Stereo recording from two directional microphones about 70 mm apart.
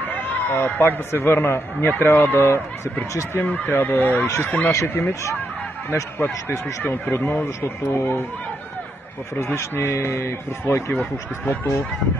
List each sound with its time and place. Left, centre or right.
0.1 s a man's voice: left
4.7 s a man's voice: left
6.8 s a man's voice: left
9.3 s a man's voice: left